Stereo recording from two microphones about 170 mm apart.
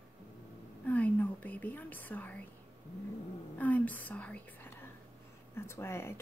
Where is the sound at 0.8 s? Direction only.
10° left (ahead or behind).